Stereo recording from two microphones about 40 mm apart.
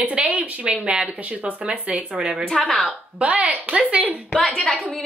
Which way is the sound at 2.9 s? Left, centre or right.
Right.